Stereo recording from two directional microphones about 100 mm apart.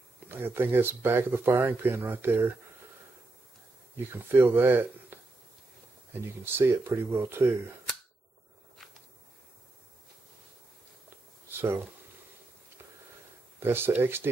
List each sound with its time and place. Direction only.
0.3 s speech: 20° right (ahead or behind)
3.9 s speech: 20° right (ahead or behind)
6.4 s speech: 20° right (ahead or behind)
11.6 s speech: 20° right (ahead or behind)
13.6 s speech: 20° right (ahead or behind)